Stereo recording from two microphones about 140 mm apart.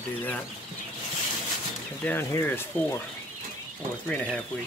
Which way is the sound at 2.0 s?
10° left (ahead or behind).